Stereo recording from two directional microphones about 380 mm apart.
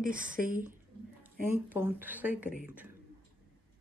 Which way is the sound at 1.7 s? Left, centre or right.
Centre.